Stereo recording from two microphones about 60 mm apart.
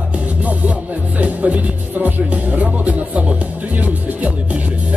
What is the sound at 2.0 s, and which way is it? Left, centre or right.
Speech, right.